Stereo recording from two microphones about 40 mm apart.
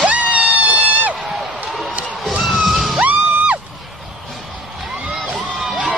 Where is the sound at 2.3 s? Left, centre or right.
Centre.